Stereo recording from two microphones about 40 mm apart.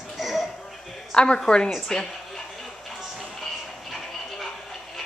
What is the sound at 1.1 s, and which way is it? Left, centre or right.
Speech, left.